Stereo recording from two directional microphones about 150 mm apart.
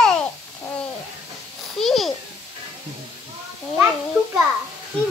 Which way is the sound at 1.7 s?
Centre (ahead or behind).